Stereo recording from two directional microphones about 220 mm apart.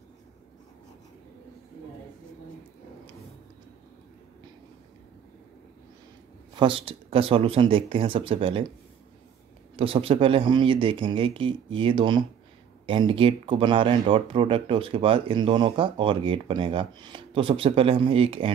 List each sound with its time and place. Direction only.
6.5 s speech: 25° right (ahead or behind)
9.8 s speech: 25° right (ahead or behind)